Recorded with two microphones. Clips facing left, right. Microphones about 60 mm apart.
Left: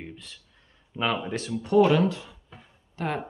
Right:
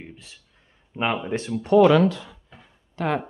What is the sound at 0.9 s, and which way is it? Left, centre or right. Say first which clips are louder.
Speech: right 3 dB; right.